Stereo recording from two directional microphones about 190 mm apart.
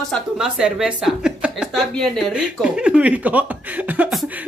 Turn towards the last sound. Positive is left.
turn(degrees=-5)  # may be behind; listen again after turning